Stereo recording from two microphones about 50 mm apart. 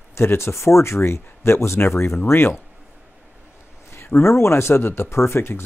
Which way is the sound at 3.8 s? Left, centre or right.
Left.